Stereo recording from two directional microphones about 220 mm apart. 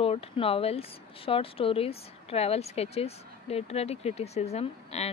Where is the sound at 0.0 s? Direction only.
25° left (ahead or behind).